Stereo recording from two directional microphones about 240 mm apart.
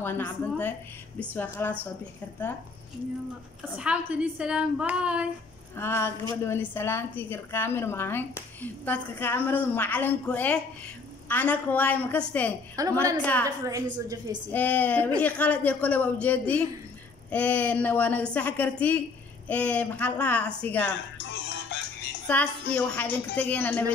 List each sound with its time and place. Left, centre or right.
0.0 s a woman's voice: centre
3.7 s a woman's voice: centre
5.8 s a woman's voice: centre
12.8 s a woman's voice: centre
13.2 s a woman's voice: centre
13.9 s a woman's voice: centre
14.5 s a woman's voice: centre
22.2 s a woman's voice: centre